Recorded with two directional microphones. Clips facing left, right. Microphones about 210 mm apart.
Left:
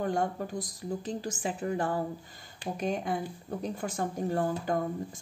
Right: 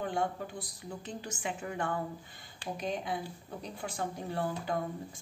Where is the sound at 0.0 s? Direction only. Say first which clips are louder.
Left 4 dB; 40° left (ahead or behind).